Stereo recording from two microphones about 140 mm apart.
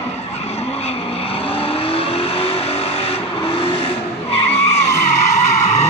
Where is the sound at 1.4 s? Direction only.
40° left (ahead or behind).